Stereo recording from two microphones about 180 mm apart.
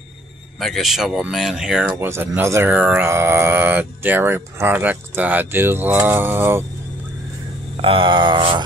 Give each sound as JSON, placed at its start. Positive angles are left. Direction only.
{"t": 0.6, "sound": "speech", "side_deg": 0}
{"t": 7.8, "sound": "speech", "side_deg": -30}